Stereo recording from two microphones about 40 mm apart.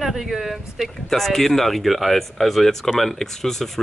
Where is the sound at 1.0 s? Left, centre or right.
Centre.